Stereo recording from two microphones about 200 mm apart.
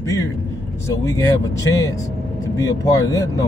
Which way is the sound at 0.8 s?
15° left (ahead or behind).